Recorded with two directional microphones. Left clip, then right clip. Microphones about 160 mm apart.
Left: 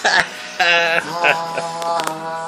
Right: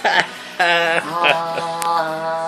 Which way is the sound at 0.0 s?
20° right (ahead or behind).